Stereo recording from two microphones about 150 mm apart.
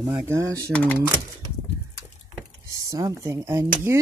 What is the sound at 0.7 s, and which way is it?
Speech, 10° left (ahead or behind).